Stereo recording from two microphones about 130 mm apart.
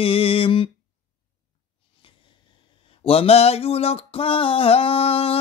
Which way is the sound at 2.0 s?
40° left (ahead or behind).